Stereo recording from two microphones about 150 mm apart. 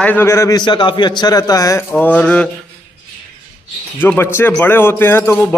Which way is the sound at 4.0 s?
15° left (ahead or behind).